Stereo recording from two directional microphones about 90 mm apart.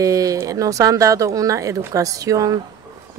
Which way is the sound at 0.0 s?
40° right (ahead or behind).